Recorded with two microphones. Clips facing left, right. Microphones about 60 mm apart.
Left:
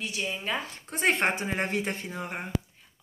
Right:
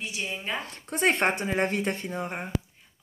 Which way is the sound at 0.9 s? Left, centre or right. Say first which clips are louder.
Right 2 dB; right.